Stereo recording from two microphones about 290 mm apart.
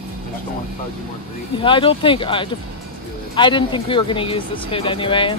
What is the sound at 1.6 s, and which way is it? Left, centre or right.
Speech, centre.